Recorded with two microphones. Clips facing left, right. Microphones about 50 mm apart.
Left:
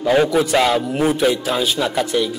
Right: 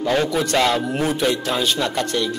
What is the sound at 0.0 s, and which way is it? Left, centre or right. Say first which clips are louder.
Speech: left 4 dB; centre.